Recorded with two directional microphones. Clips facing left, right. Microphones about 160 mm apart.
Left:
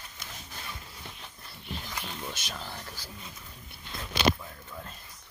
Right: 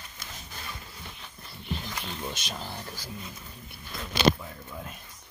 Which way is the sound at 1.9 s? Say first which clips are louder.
Right 2 dB; 20° right (ahead or behind).